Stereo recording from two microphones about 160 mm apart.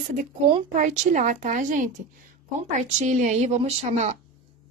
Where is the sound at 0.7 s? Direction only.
50° right (ahead or behind).